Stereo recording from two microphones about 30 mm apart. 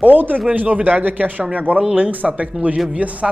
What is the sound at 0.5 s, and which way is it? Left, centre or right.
Speech, right.